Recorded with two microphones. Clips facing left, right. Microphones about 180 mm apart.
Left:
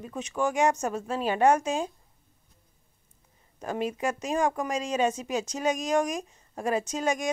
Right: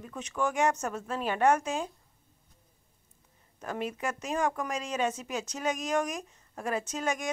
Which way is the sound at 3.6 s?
25° left (ahead or behind).